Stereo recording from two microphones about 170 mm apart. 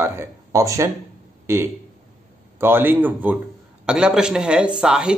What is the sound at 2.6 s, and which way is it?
A man's voice, 10° right (ahead or behind).